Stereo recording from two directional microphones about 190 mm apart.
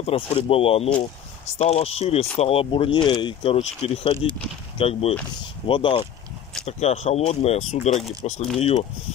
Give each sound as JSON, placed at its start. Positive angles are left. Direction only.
{"t": 0.0, "sound": "speech", "side_deg": 30}